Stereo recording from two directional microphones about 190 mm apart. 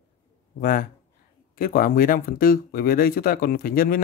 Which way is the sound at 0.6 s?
50° left (ahead or behind).